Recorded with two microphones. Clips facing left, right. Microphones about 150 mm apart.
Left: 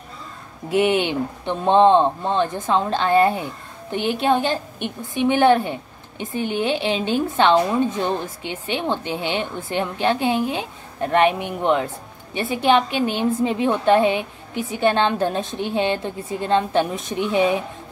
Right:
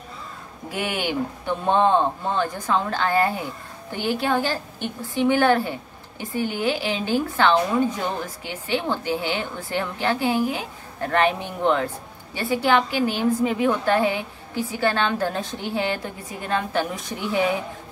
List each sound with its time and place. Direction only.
0.7 s a woman's voice: 25° left (ahead or behind)